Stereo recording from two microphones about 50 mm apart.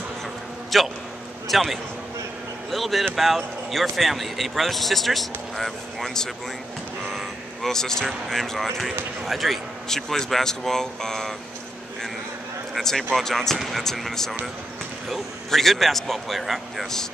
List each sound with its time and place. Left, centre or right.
0.7 s speech: centre
7.1 s vehicle: centre
8.3 s speech: centre
12.7 s speech: centre
13.6 s speech: centre